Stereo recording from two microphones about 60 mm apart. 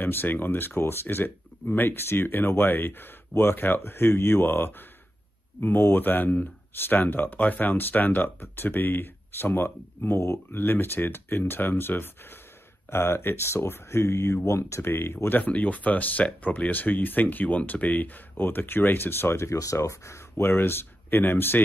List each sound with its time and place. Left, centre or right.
0.0 s speech: left
15.2 s speech: left